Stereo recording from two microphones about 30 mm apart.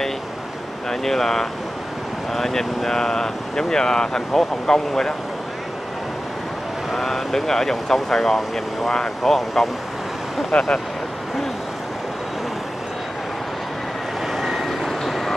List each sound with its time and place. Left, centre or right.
0.8 s speech: centre
6.9 s speech: centre
10.5 s speech: left
14.2 s vehicle: centre
14.9 s vehicle: centre